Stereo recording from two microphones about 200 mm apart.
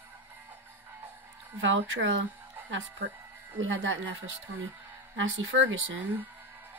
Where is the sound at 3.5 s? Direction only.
80° right.